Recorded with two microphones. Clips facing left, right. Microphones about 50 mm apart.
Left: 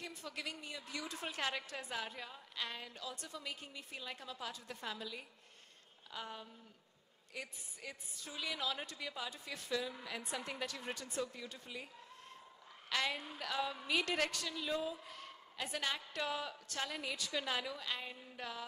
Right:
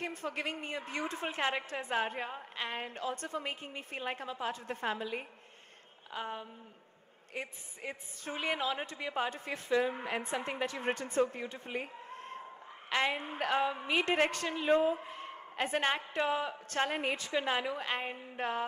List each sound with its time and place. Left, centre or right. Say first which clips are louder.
0.0 s a woman's voice: right 8 dB; right